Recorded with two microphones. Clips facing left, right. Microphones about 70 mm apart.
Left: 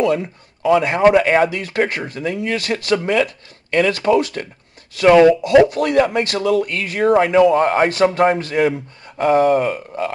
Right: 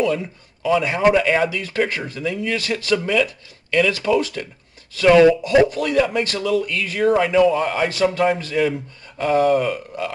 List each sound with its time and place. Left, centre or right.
0.2 s speech: left
5.4 s speech: left